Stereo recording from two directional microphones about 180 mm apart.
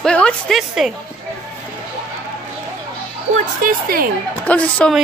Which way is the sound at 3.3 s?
50° right (ahead or behind).